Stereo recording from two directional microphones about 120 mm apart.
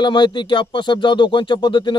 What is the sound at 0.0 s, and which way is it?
Speech, 40° left (ahead or behind).